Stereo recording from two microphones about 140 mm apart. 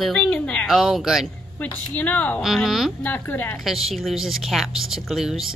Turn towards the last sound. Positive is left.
turn(degrees=0)  # may be behind; listen again after turning